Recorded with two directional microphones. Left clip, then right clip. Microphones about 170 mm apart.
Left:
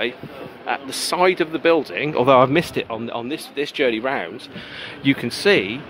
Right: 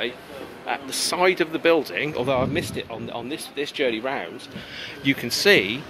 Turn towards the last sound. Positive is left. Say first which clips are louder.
# even
turn(degrees=0)  # may be behind; listen again after turning